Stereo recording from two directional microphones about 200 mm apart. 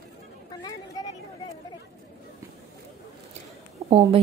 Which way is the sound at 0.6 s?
15° left (ahead or behind).